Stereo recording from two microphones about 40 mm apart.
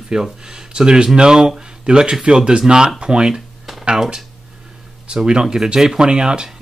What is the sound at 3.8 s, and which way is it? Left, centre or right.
Speech, centre.